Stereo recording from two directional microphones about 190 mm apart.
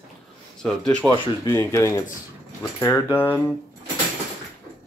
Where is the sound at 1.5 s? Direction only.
10° left (ahead or behind).